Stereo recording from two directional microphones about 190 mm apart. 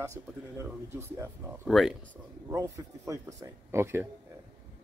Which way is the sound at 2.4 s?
15° right (ahead or behind).